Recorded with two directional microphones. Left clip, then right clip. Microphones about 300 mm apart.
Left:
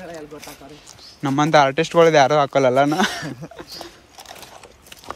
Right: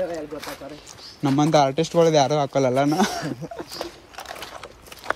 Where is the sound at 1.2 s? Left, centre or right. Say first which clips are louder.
Left 3 dB; centre.